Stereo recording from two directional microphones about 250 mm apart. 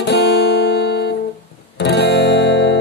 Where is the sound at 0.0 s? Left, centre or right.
Left.